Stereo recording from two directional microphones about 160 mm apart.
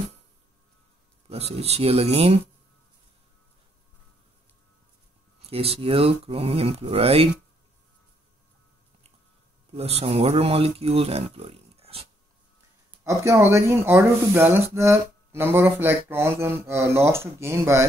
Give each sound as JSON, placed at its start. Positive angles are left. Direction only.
{"t": 1.3, "sound": "speech", "side_deg": -40}
{"t": 5.5, "sound": "speech", "side_deg": -35}
{"t": 9.8, "sound": "speech", "side_deg": -40}
{"t": 13.0, "sound": "speech", "side_deg": -20}